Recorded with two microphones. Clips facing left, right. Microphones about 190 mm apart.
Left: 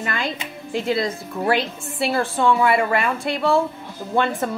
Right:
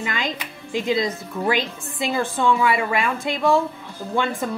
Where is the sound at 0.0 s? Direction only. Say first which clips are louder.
Left 1 dB; 15° right (ahead or behind).